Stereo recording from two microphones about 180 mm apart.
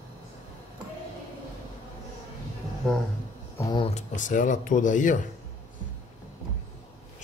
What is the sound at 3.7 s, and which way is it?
Speech, 35° left (ahead or behind).